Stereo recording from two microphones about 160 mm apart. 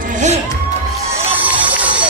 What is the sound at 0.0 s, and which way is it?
Music, 50° right (ahead or behind).